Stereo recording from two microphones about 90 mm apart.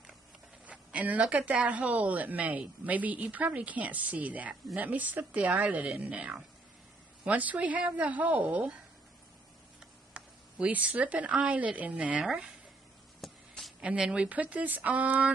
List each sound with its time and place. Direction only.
0.7 s a woman's voice: 15° right (ahead or behind)
10.1 s speech: 15° right (ahead or behind)
13.2 s a sound: centre (ahead or behind)
13.7 s a woman's voice: 10° right (ahead or behind)